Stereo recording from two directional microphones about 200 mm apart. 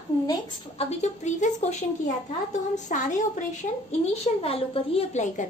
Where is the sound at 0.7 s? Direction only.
35° left (ahead or behind).